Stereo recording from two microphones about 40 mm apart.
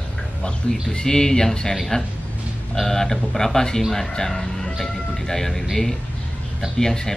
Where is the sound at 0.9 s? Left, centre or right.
Centre.